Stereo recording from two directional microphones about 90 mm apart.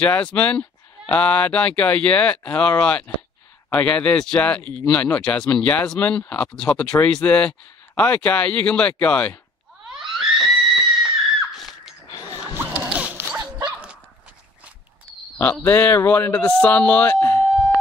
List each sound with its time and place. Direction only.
0.0 s speech: 15° left (ahead or behind)
9.8 s screaming: 5° right (ahead or behind)
11.5 s a sound: centre (ahead or behind)
12.5 s zipper: 15° right (ahead or behind)
13.4 s dog: 50° right (ahead or behind)
15.6 s speech: 25° left (ahead or behind)
17.2 s siren: 30° left (ahead or behind)